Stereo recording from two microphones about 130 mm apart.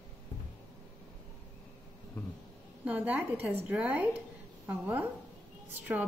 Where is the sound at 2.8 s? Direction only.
10° right (ahead or behind).